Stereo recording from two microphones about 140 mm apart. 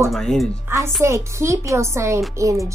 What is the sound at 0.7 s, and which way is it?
A woman's voice, 20° right (ahead or behind).